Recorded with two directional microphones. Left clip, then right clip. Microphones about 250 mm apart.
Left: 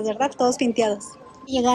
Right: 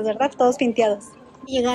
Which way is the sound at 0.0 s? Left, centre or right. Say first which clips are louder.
Right 2 dB; centre.